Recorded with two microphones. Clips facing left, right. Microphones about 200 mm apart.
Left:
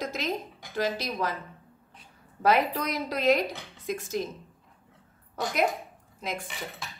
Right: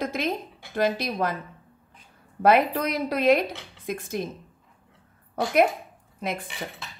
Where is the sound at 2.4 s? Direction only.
55° right (ahead or behind).